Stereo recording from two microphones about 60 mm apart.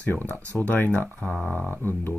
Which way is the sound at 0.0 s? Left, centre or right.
Left.